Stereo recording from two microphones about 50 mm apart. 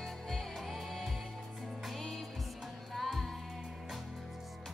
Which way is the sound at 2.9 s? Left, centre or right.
Centre.